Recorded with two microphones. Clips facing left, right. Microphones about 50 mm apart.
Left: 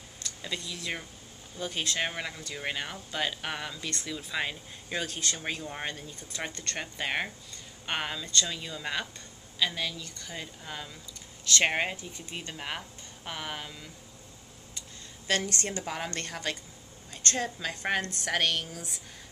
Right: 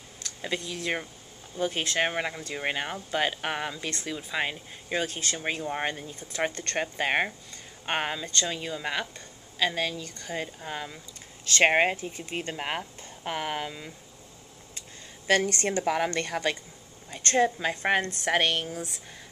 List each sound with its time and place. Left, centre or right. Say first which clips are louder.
0.4 s speech: right 5 dB; right
15.2 s a woman's voice: right 6 dB; right